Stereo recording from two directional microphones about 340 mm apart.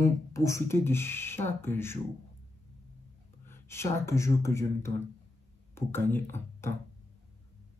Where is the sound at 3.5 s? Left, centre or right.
Centre.